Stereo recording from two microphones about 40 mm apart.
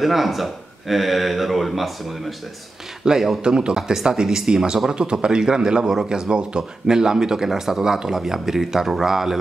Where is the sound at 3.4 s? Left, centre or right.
Right.